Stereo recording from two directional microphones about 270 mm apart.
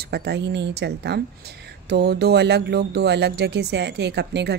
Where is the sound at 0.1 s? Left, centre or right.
Right.